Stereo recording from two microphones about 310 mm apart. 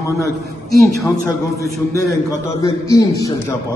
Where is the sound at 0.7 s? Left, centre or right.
Centre.